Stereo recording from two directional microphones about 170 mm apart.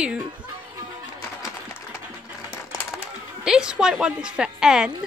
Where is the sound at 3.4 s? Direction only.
5° right (ahead or behind).